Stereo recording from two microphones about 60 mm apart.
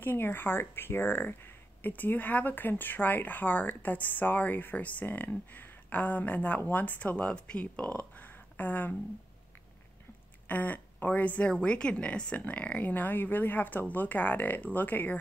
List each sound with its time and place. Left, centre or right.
0.0 s speech: left
10.5 s speech: left